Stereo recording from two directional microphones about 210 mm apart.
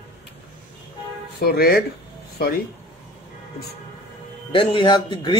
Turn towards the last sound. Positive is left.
turn(degrees=25)  # may be behind; listen again after turning